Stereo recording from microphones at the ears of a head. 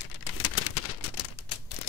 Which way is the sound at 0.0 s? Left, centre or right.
Left.